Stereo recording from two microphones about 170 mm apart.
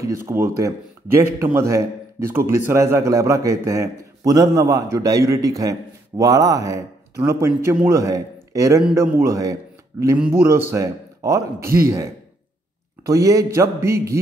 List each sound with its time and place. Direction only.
0.0 s a man's voice: 15° right (ahead or behind)
13.0 s speech: 20° right (ahead or behind)